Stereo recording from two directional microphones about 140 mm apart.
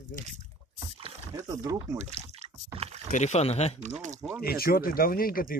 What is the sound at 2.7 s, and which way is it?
Rowboat, 45° right (ahead or behind).